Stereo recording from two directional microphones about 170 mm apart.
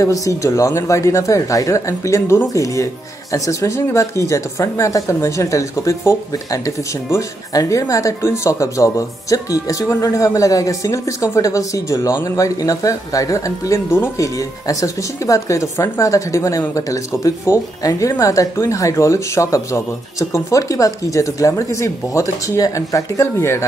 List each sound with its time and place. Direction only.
0.0 s speech: 20° left (ahead or behind)